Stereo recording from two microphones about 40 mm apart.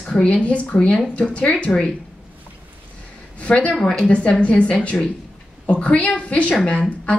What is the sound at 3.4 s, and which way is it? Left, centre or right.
Speech, left.